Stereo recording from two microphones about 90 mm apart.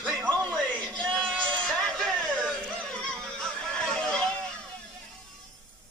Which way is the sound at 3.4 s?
5° left (ahead or behind).